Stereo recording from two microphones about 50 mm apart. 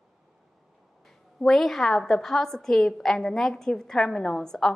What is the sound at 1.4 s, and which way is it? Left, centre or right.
A woman's voice, centre.